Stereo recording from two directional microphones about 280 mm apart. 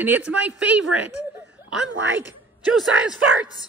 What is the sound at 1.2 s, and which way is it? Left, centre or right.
Laughter, centre.